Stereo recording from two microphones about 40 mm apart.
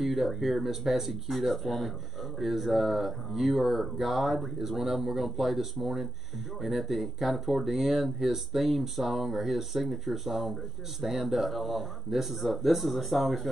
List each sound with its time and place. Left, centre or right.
0.0 s speech: centre